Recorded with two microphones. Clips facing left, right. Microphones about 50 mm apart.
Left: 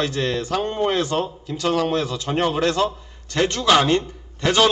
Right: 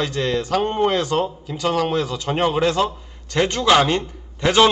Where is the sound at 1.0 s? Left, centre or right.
Centre.